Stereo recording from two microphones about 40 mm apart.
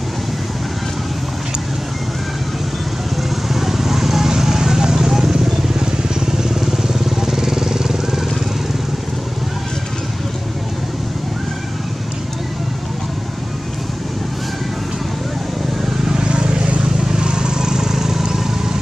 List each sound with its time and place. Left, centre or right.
3.4 s vehicle: centre
6.6 s vehicle: centre
16.1 s vehicle: right